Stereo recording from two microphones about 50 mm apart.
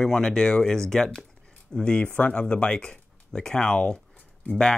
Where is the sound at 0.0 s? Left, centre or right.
Centre.